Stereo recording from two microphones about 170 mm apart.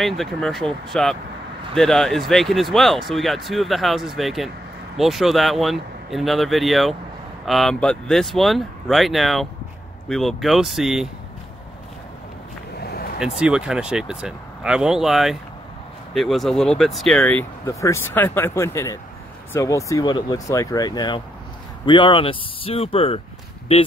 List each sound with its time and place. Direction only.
0.0 s speech: centre (ahead or behind)
12.7 s a sound: 65° left (ahead or behind)
13.2 s speech: 5° right (ahead or behind); by 23.2 s 35° left (ahead or behind)